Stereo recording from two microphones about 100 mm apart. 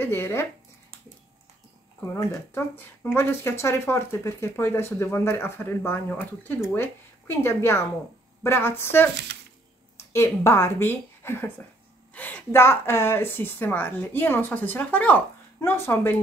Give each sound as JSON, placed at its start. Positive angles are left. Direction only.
{"t": 0.0, "sound": "speech", "side_deg": 20}
{"t": 2.1, "sound": "speech", "side_deg": 30}